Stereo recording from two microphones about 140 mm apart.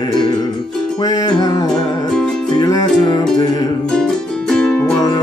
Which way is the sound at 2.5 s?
30° left (ahead or behind).